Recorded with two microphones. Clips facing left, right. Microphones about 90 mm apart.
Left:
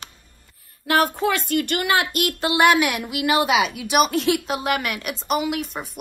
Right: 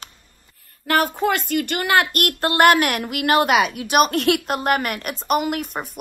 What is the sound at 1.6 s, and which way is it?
Speech, 45° right (ahead or behind).